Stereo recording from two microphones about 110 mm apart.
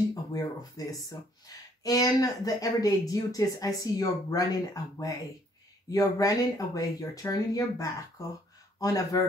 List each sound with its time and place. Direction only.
0.1 s speech: 35° left (ahead or behind)
5.9 s speech: 35° left (ahead or behind)